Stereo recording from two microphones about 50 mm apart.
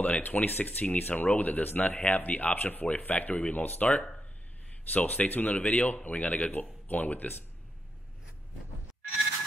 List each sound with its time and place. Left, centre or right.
0.0 s speech: left
4.9 s speech: left